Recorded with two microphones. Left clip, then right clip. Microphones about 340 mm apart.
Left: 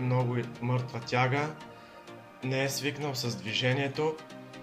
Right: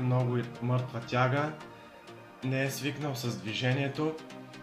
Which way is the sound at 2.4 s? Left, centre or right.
Left.